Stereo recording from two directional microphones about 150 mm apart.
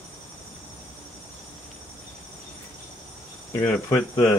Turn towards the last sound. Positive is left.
turn(degrees=20)  # may be behind; listen again after turning